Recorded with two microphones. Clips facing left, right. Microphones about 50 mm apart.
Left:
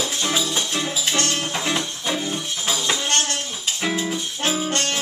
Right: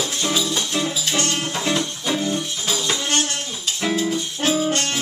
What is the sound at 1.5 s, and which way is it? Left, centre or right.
Music, centre.